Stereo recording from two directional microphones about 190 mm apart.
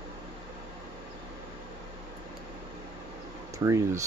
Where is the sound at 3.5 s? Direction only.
15° right (ahead or behind).